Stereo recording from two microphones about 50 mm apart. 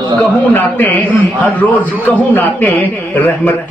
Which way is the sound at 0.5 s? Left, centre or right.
Left.